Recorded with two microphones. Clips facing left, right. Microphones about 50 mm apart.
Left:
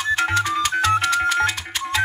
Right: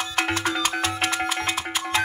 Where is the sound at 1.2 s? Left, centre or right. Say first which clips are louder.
Left 7 dB; centre.